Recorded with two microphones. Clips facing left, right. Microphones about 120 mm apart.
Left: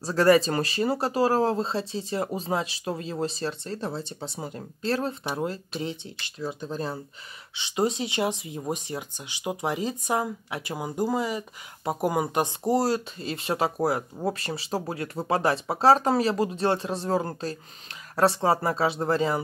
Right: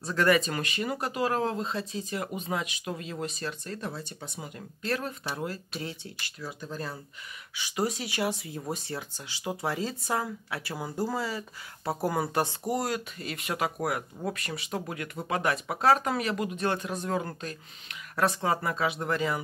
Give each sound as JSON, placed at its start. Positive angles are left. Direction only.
{"t": 0.0, "sound": "speech", "side_deg": 35}
{"t": 12.7, "sound": "speech", "side_deg": 30}